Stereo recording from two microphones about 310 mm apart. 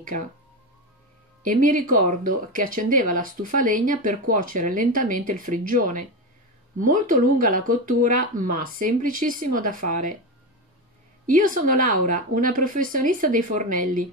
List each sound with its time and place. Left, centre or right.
0.0 s speech: right
1.4 s speech: right
11.2 s speech: right